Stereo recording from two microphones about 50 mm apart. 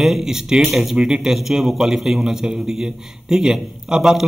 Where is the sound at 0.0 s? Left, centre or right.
Centre.